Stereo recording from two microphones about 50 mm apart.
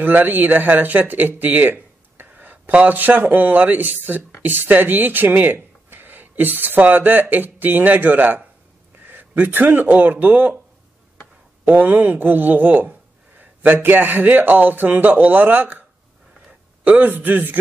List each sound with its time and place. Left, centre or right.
0.0 s speech: right
9.0 s a sound: right
9.4 s speech: right
11.6 s speech: right
13.4 s a sound: right
13.7 s speech: right
16.8 s a man's voice: right
17.1 s speech: right